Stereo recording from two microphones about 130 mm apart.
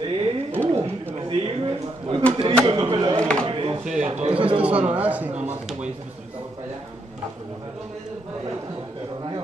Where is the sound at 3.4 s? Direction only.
40° right (ahead or behind).